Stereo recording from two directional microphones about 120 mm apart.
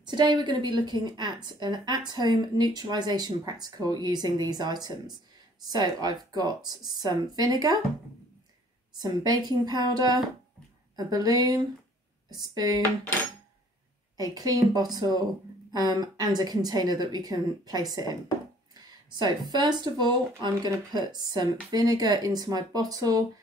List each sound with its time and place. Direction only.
0.0 s a woman's voice: 40° right (ahead or behind)
8.9 s a woman's voice: 35° right (ahead or behind)
14.1 s a woman's voice: 30° right (ahead or behind)